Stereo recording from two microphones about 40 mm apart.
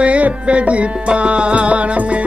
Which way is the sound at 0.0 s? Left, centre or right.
Right.